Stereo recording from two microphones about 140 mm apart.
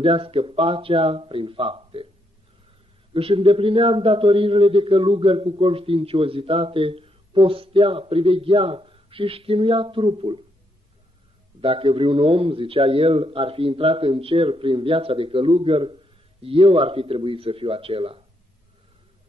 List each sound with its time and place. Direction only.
0.0 s a man's voice: 40° right (ahead or behind)
3.1 s a man's voice: 40° right (ahead or behind)
11.6 s a man's voice: 40° right (ahead or behind)